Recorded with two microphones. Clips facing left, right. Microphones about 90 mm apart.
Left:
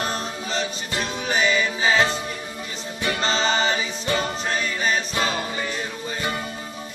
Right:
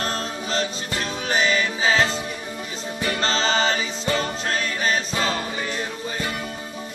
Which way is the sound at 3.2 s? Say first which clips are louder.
Even; 5° left (ahead or behind).